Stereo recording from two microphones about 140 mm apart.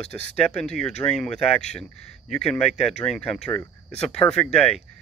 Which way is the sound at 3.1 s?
10° left (ahead or behind).